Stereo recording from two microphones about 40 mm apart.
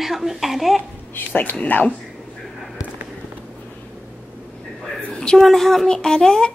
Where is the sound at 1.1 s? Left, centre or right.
Left.